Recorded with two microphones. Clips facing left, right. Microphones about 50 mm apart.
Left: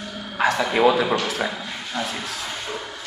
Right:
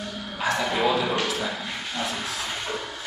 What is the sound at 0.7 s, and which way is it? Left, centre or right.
Speech, left.